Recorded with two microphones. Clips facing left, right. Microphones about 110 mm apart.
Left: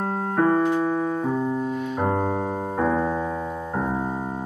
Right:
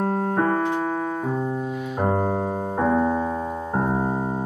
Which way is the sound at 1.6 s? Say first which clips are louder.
Left 1 dB; 5° right (ahead or behind).